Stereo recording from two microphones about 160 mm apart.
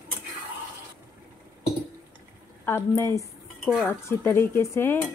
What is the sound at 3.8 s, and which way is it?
Cutlery, 15° left (ahead or behind).